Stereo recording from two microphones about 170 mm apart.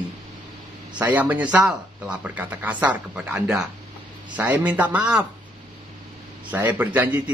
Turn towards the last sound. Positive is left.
turn(degrees=-10)  # may be behind; listen again after turning